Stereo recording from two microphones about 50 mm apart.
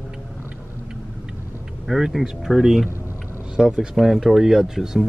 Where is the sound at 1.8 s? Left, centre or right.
Centre.